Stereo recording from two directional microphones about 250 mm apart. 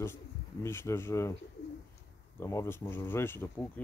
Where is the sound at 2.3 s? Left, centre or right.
Centre.